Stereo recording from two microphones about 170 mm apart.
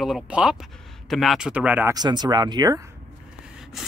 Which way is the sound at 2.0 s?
25° right (ahead or behind).